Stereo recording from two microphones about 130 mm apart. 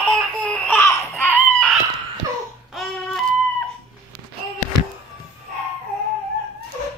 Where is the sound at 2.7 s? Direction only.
Centre (ahead or behind).